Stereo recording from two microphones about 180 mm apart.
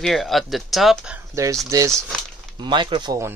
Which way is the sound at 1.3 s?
15° right (ahead or behind).